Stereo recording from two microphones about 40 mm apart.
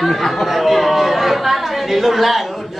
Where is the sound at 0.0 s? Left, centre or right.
Centre.